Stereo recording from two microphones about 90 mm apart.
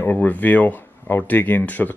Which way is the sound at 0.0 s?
20° left (ahead or behind).